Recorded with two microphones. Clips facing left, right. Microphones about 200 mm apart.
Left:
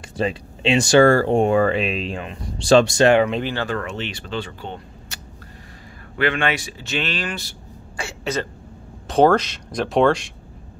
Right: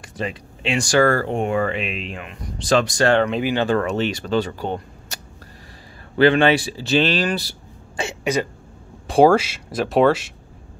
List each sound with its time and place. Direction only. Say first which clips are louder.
0.2 s speech: left 5 dB; 30° left (ahead or behind)
3.3 s speech: right 2 dB; 5° right (ahead or behind)
3.7 s speech: right 7 dB; 40° right (ahead or behind)
8.0 s throat clearing: right 4 dB; 15° right (ahead or behind)
9.1 s speech: right 2 dB; 10° right (ahead or behind)